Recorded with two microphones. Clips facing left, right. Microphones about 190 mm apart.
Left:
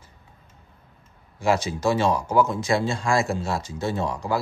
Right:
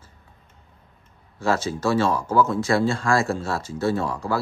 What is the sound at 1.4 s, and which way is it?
Speech, 15° left (ahead or behind).